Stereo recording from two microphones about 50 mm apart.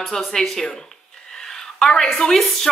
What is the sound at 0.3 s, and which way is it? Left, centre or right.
Speech, centre.